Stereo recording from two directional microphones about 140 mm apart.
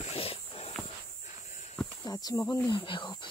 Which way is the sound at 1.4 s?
65° left (ahead or behind).